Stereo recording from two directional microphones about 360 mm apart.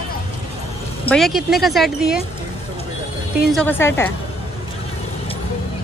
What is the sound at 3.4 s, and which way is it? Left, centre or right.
Speech, centre.